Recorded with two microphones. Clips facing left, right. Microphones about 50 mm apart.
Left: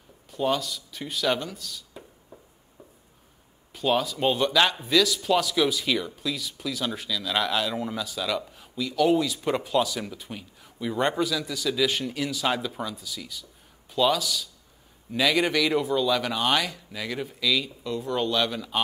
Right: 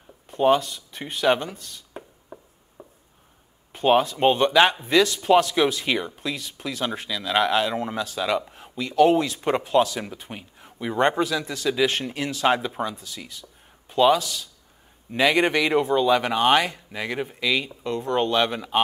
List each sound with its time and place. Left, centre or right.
0.3 s speech: right
2.8 s a sound: right
3.7 s speech: right